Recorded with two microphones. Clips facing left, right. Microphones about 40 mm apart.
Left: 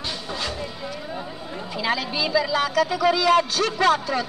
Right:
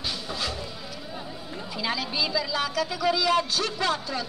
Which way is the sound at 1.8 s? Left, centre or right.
Left.